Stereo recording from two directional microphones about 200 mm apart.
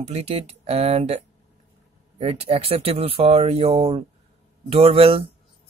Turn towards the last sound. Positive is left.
turn(degrees=-30)  # may be behind; listen again after turning